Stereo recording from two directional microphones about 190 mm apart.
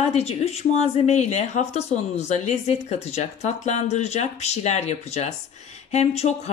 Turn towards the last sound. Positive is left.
turn(degrees=35)  # may be behind; listen again after turning